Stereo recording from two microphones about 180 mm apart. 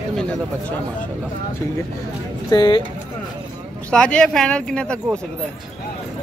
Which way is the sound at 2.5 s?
25° left (ahead or behind).